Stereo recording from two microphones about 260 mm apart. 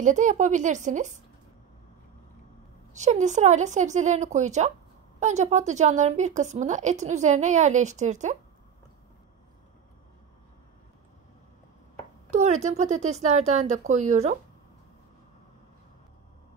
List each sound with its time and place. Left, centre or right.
0.0 s a woman's voice: right
2.9 s a woman's voice: right
12.3 s a woman's voice: right